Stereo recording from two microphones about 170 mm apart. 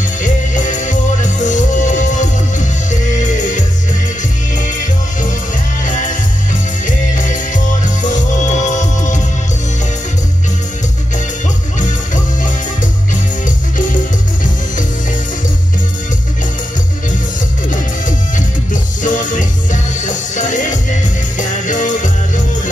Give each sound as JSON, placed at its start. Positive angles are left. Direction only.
{"t": 0.2, "sound": "music", "side_deg": 45}
{"t": 6.9, "sound": "music", "side_deg": 50}
{"t": 18.7, "sound": "music", "side_deg": 50}